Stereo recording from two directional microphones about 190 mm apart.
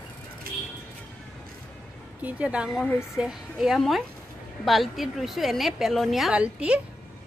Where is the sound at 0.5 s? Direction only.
50° right (ahead or behind).